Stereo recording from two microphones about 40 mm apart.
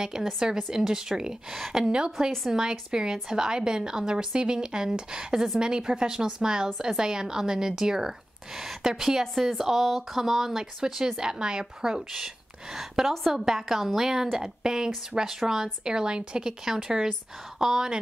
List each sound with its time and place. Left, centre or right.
0.4 s speech: centre
9.2 s speech: centre